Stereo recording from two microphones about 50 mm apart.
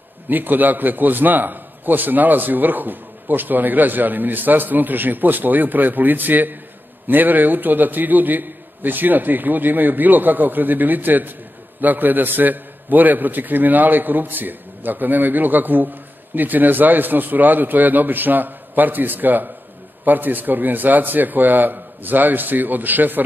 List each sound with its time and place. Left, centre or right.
0.3 s a man's voice: right